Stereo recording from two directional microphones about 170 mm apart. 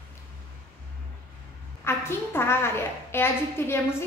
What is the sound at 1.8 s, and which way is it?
A woman's voice, 15° left (ahead or behind).